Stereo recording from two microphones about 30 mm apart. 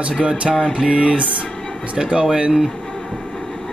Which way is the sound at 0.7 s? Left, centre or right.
Right.